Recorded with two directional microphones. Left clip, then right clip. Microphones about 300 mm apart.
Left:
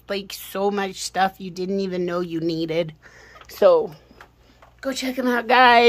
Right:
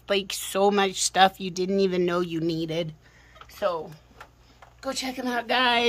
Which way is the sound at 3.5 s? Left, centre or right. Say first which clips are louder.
Left 12 dB; left.